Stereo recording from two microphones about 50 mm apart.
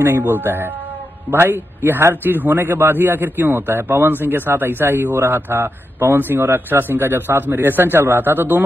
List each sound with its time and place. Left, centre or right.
0.2 s speech: right